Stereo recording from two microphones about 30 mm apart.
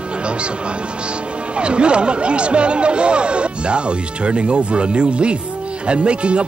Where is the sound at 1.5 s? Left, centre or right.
Right.